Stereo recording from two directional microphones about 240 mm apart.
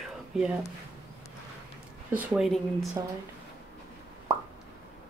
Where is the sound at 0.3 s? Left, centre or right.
Centre.